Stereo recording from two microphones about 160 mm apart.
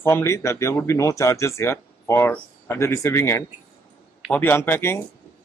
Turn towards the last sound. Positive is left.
turn(degrees=15)  # may be behind; listen again after turning